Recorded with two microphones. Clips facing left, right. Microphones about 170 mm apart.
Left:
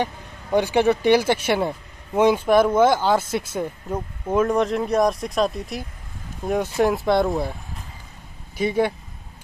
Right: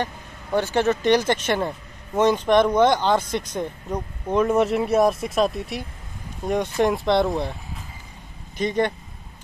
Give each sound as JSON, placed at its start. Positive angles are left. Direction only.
{"t": 0.0, "sound": "speech", "side_deg": 15}
{"t": 8.5, "sound": "speech", "side_deg": 5}